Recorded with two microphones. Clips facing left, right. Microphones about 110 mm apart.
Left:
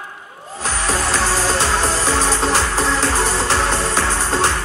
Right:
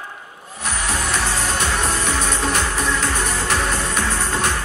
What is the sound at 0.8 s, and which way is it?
Music, 35° left (ahead or behind).